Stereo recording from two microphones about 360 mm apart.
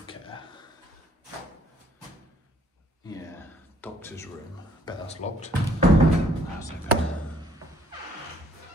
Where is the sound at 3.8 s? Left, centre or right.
Centre.